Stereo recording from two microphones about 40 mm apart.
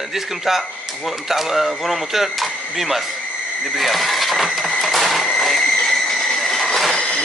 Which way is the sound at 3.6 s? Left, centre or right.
Centre.